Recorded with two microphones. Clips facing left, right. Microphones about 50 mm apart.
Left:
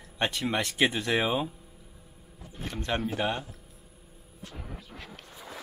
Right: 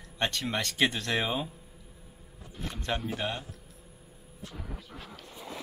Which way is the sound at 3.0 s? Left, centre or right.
Centre.